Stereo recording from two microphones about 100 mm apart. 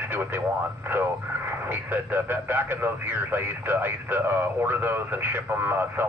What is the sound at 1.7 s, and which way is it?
Speech, 20° right (ahead or behind).